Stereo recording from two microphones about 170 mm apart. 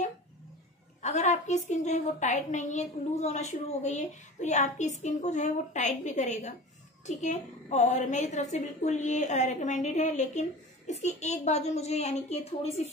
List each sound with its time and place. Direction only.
1.0 s a woman's voice: 45° left (ahead or behind)